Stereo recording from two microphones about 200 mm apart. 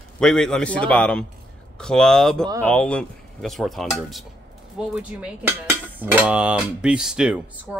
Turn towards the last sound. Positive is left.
turn(degrees=-5)  # may be behind; listen again after turning